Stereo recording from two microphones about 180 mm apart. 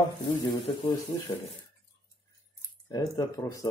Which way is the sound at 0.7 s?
25° left (ahead or behind).